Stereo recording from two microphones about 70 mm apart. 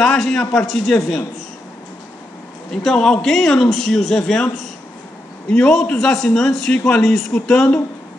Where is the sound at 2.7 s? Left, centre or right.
Centre.